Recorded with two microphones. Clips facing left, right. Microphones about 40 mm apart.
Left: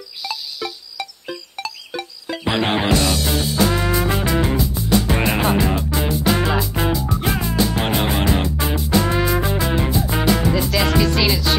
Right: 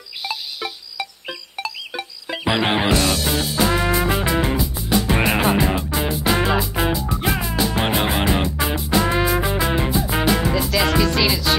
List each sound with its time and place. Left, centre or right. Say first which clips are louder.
0.3 s insect: left 1 dB; right
1.6 s music: right 2 dB; centre